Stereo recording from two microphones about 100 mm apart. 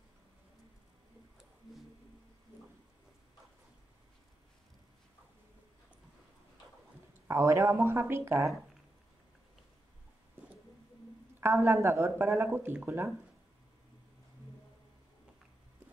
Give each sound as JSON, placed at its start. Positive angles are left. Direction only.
{"t": 7.2, "sound": "speech", "side_deg": -30}
{"t": 11.4, "sound": "speech", "side_deg": -25}